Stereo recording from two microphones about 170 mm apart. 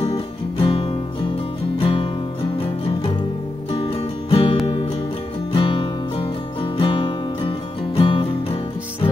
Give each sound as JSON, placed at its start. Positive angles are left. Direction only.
{"t": 0.1, "sound": "music", "side_deg": 30}
{"t": 3.7, "sound": "music", "side_deg": 30}
{"t": 5.5, "sound": "guitar", "side_deg": 30}